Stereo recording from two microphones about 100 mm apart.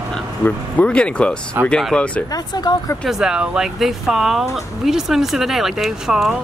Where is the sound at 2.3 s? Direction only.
40° left (ahead or behind).